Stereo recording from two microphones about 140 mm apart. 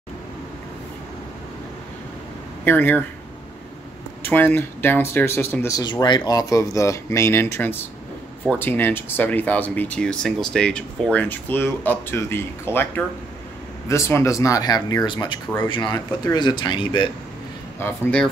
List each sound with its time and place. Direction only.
2.6 s speech: 15° left (ahead or behind)
4.2 s speech: 15° left (ahead or behind)
5.8 s speech: 30° left (ahead or behind)
17.7 s speech: 15° left (ahead or behind)